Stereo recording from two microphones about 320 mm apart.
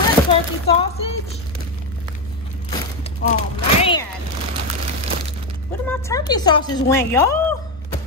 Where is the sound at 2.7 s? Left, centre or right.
Centre.